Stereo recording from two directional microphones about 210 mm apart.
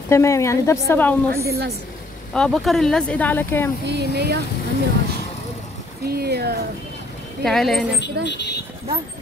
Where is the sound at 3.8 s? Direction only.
50° right (ahead or behind).